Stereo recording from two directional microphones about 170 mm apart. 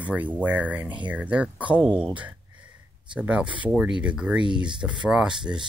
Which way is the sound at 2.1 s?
10° right (ahead or behind).